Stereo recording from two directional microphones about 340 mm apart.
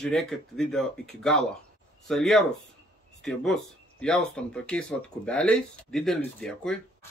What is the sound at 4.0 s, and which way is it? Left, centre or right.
Speech, centre.